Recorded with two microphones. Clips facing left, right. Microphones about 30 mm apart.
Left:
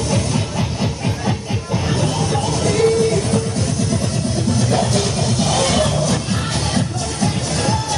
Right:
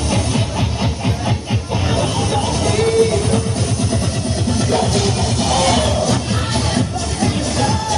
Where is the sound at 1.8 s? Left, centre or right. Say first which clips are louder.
Right 1 dB; centre.